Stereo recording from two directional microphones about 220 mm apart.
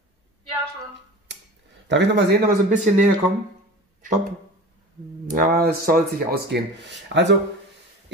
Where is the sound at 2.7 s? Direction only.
35° right (ahead or behind).